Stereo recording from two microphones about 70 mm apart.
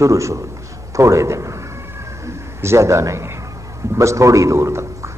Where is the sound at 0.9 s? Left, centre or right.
Right.